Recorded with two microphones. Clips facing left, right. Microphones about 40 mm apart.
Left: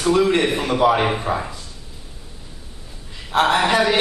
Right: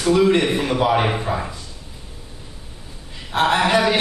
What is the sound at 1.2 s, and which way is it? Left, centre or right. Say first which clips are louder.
Speech: left 1 dB; centre.